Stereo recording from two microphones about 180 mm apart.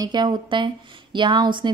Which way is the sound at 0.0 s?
25° right (ahead or behind).